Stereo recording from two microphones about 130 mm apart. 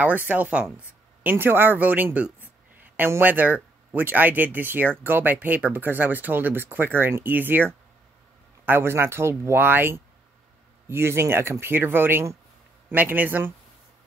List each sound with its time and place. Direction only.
0.0 s speech: 15° right (ahead or behind)